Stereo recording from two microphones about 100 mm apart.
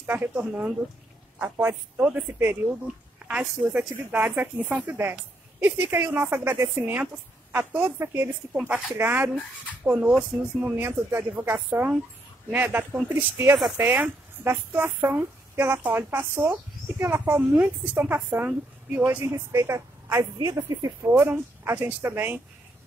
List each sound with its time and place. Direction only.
0.0 s speech: 20° right (ahead or behind)
8.5 s speech: 10° right (ahead or behind)
8.9 s speech: 20° right (ahead or behind)
17.0 s speech: 15° right (ahead or behind)